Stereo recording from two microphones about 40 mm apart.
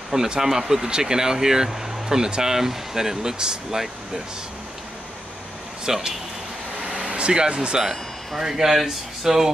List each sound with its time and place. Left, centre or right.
0.1 s speech: centre
5.9 s speech: centre
6.8 s a sound: centre
7.1 s speech: right; by 9.5 s centre